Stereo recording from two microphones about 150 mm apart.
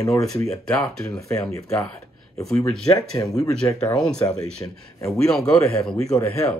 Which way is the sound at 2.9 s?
25° left (ahead or behind).